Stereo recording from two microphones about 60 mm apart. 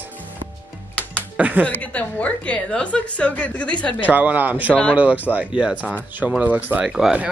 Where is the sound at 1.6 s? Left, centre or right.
Left.